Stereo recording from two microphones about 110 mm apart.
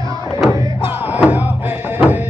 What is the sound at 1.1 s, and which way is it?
Music, 15° right (ahead or behind).